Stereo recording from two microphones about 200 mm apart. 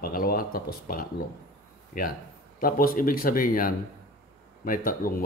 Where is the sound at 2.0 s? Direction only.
45° left (ahead or behind).